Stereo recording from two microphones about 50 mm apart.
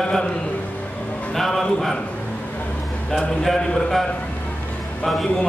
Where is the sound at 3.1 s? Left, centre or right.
Centre.